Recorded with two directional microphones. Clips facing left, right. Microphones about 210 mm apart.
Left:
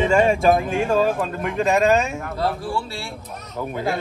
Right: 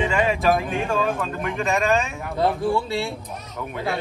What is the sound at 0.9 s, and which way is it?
Speech, 30° left (ahead or behind).